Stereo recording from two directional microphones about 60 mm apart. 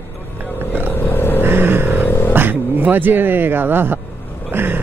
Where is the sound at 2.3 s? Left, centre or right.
Right.